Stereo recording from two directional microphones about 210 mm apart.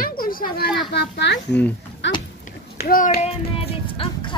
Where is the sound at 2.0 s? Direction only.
60° left (ahead or behind).